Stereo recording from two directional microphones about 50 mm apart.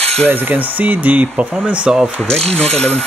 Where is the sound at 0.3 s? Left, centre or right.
Right.